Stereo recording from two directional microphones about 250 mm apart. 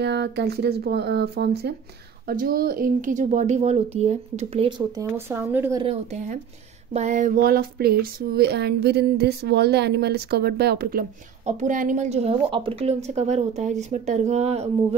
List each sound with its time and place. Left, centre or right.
0.0 s speech: right; by 5.9 s centre
6.1 s speech: right